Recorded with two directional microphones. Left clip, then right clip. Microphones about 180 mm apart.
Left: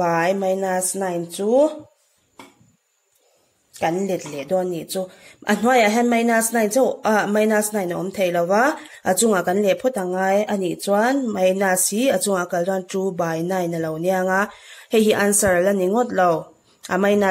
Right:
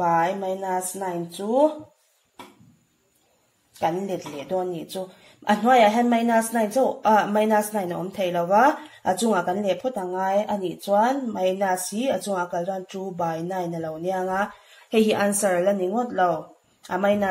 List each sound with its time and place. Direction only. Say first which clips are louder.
0.0 s speech: left 2 dB; 50° left (ahead or behind)
3.8 s speech: left 3 dB; 35° left (ahead or behind)